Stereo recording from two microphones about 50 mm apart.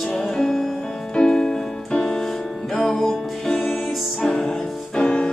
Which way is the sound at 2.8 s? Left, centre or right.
Centre.